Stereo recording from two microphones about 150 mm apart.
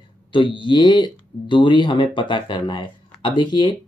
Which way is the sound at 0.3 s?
35° left (ahead or behind).